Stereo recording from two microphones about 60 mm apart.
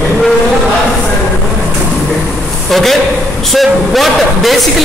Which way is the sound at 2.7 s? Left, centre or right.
Centre.